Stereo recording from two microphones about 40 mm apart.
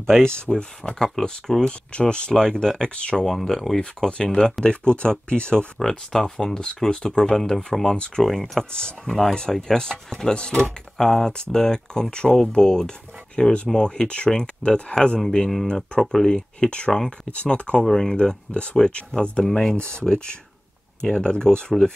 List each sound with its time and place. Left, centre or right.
0.0 s speech: centre
2.8 s speech: left
3.3 s speech: centre; by 5.7 s left
5.8 s speech: centre
9.3 s speech: centre
11.0 s speech: centre
15.1 s speech: centre
16.0 s speech: centre; by 17.7 s left
17.7 s speech: centre
18.5 s speech: left
21.0 s speech: left